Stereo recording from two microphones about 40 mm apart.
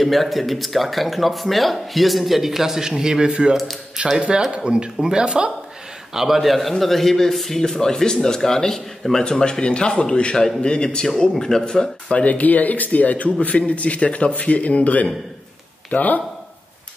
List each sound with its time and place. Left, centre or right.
0.0 s speech: centre; by 5.5 s right
6.1 s a man's voice: centre; by 11.1 s left
11.1 s a man's voice: centre
12.3 s a man's voice: left